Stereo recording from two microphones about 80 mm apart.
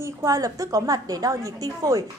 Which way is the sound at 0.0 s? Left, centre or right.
Right.